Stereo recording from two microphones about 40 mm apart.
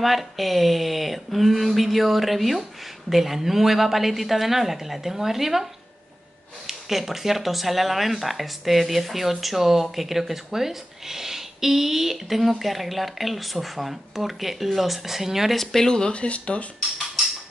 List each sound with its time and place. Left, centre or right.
0.0 s speech: centre
6.7 s speech: centre
15.5 s speech: centre; by 16.6 s left